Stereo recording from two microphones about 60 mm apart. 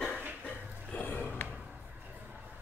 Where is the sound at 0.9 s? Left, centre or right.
Left.